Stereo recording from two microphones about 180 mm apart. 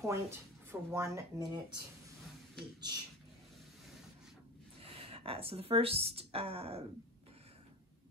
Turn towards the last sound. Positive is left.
turn(degrees=-35)  # may be behind; listen again after turning